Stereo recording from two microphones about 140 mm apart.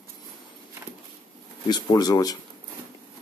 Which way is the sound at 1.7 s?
30° left (ahead or behind).